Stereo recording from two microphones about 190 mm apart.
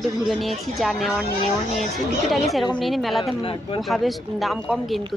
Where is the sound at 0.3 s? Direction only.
Centre (ahead or behind).